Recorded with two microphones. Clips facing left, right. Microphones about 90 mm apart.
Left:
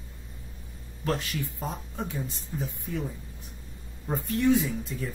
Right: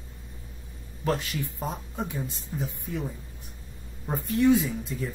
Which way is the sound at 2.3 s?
Centre (ahead or behind).